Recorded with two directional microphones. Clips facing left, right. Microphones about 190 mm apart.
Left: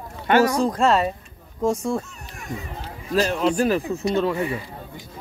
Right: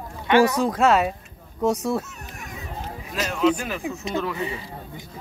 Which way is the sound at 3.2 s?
40° left (ahead or behind).